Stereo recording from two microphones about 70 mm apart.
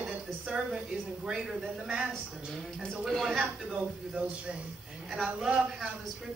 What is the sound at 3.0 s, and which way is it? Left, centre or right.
Speech, centre.